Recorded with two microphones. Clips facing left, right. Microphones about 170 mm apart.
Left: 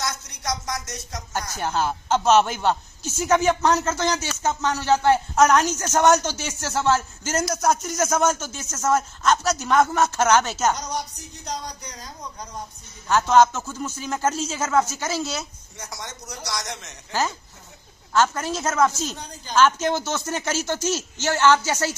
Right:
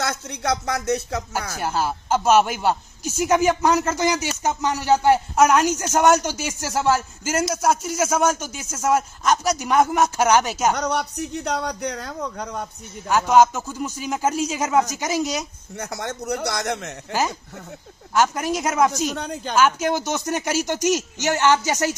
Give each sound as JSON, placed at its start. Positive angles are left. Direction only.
{"t": 0.0, "sound": "speech", "side_deg": -60}
{"t": 1.6, "sound": "a man's voice", "side_deg": -5}
{"t": 10.7, "sound": "speech", "side_deg": -65}
{"t": 13.1, "sound": "a man's voice", "side_deg": -10}
{"t": 15.7, "sound": "speech", "side_deg": -60}
{"t": 17.1, "sound": "a man's voice", "side_deg": -15}
{"t": 19.1, "sound": "speech", "side_deg": -60}
{"t": 19.5, "sound": "a man's voice", "side_deg": -10}